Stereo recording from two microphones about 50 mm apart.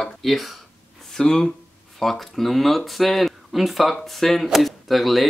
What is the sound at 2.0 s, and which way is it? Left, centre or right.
Speech, centre.